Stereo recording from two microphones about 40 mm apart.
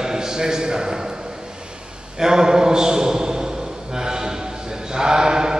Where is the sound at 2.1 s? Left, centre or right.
Centre.